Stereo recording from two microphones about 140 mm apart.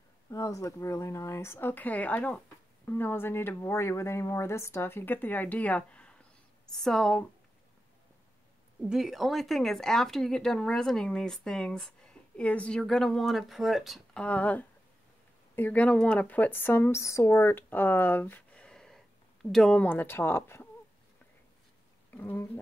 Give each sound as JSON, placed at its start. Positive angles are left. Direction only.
{"t": 0.3, "sound": "speech", "side_deg": 25}
{"t": 8.8, "sound": "speech", "side_deg": -5}
{"t": 22.1, "sound": "speech", "side_deg": 15}